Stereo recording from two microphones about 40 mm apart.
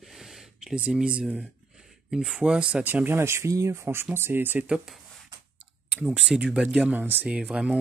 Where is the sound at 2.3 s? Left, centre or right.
Centre.